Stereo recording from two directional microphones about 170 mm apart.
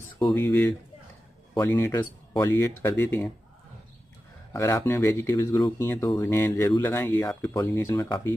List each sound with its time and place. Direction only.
0.2 s speech: 10° left (ahead or behind)
4.5 s speech: 20° left (ahead or behind)